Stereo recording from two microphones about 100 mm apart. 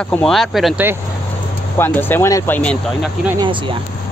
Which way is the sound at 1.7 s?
20° left (ahead or behind).